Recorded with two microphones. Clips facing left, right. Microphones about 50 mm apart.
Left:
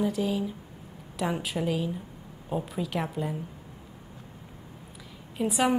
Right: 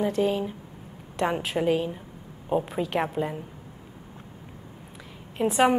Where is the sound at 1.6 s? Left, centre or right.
Right.